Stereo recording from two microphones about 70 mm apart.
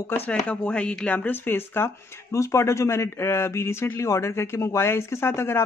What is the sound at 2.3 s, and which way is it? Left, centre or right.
Speech, left.